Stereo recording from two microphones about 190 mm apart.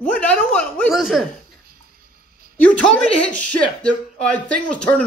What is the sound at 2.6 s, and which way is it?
Speech, 5° left (ahead or behind).